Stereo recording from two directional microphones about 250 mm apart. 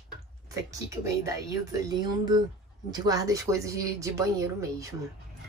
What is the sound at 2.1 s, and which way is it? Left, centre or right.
A woman's voice, centre.